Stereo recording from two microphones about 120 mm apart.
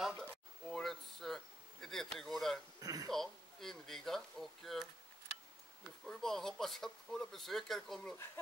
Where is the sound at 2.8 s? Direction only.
30° right (ahead or behind).